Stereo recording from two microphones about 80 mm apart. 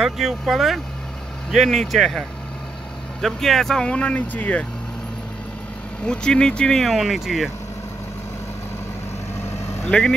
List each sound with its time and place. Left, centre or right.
0.0 s speech: centre
6.0 s speech: centre
9.8 s speech: centre